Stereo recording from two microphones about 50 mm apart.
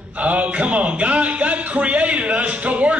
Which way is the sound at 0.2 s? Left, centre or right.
Right.